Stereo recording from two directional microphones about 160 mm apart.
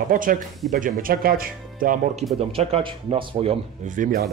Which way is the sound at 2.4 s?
40° right (ahead or behind).